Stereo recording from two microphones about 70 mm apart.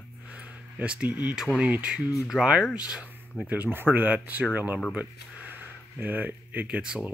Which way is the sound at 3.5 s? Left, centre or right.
Right.